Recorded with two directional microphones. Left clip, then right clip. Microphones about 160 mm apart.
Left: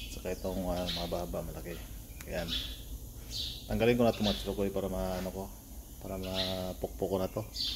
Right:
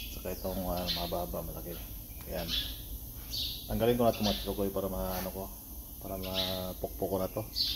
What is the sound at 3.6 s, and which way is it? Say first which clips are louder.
Speech: even; 30° left (ahead or behind).